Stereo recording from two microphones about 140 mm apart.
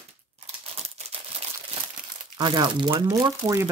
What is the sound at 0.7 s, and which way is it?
Crumpling, 45° right (ahead or behind).